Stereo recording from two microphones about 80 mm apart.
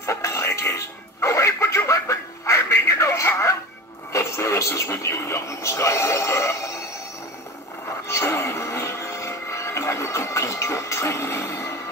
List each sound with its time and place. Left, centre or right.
0.0 s music: left
4.1 s television: left
8.1 s television: left